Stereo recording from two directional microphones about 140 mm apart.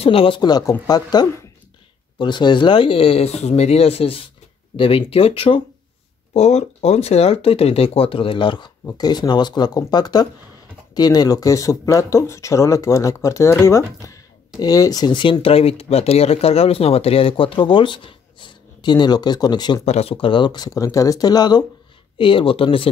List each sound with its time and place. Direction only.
0.0 s speech: 40° left (ahead or behind)
19.8 s speech: 45° left (ahead or behind)